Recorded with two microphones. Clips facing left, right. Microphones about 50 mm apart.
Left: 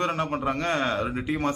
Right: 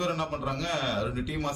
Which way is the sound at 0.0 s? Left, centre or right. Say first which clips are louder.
Left 4 dB; left.